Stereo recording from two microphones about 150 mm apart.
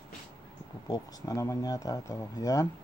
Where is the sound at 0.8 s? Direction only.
25° left (ahead or behind).